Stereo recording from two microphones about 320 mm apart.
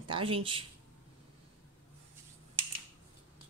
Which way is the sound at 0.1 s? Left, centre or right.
Centre.